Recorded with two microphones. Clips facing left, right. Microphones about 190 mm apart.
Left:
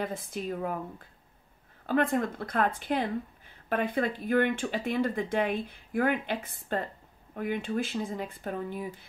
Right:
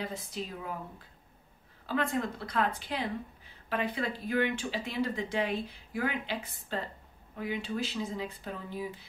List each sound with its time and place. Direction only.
0.0 s speech: 50° left (ahead or behind)
1.9 s speech: 50° left (ahead or behind)